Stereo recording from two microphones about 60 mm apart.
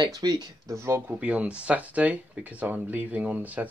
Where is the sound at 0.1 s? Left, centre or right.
Right.